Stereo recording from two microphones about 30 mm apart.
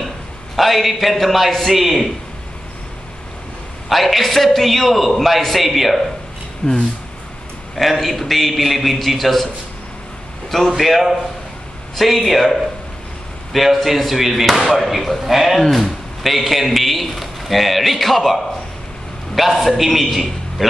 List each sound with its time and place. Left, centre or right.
0.6 s speech: centre
3.9 s speech: centre
6.6 s speech: left
7.7 s speech: centre
10.8 s speech: centre